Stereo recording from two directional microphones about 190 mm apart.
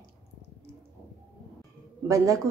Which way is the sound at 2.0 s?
15° right (ahead or behind).